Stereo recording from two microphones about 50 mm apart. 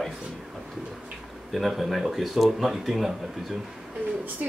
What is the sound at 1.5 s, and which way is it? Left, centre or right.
Speech, centre.